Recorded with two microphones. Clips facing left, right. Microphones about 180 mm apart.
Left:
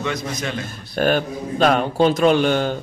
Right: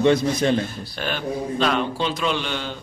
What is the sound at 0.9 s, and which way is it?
Speech, 45° left (ahead or behind).